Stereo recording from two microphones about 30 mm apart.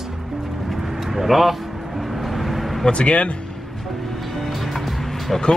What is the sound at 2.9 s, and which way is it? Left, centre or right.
Speech, left.